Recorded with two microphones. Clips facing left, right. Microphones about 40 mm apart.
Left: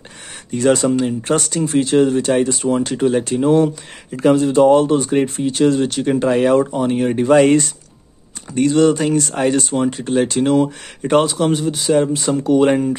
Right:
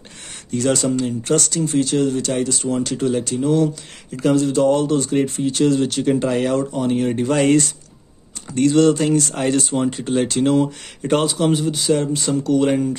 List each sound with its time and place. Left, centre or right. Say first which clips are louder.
0.5 s speech: left 4 dB; centre